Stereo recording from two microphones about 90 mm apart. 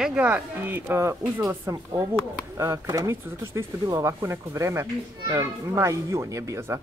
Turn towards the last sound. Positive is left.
turn(degrees=-35)  # may be behind; listen again after turning